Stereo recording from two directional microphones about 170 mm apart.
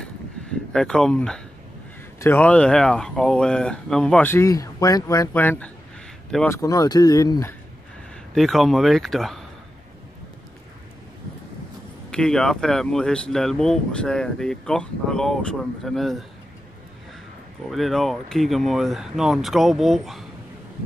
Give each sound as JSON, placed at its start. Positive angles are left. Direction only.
{"t": 0.0, "sound": "a sound", "side_deg": 5}
{"t": 2.1, "sound": "speech", "side_deg": 15}
{"t": 8.4, "sound": "speech", "side_deg": 0}
{"t": 12.1, "sound": "speech", "side_deg": 5}
{"t": 17.6, "sound": "speech", "side_deg": 0}